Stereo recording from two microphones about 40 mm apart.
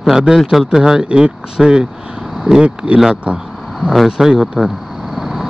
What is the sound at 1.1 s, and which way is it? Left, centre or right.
Speech, right.